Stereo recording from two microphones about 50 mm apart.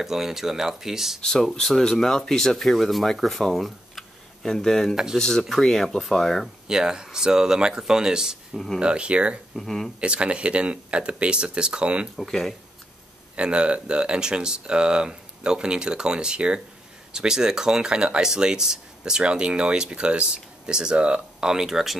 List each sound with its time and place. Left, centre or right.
0.0 s speech: centre
1.2 s speech: centre
4.5 s speech: centre
5.1 s speech: centre
5.6 s speech: centre
6.7 s speech: centre
9.6 s speech: centre
9.9 s speech: right
12.2 s speech: centre
13.4 s speech: right; by 21.9 s centre